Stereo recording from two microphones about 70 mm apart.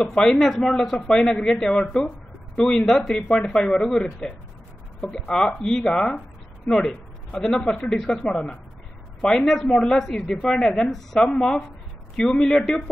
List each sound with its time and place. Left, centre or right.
0.1 s a man's voice: centre